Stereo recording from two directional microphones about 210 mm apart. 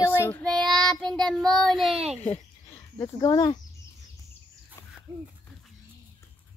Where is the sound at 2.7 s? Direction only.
15° left (ahead or behind).